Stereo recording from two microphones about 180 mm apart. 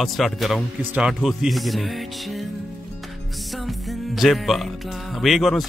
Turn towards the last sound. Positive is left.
turn(degrees=0)  # may be behind; listen again after turning